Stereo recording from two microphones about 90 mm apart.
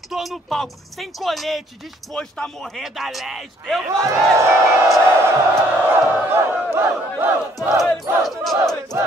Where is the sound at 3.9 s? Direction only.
35° right (ahead or behind).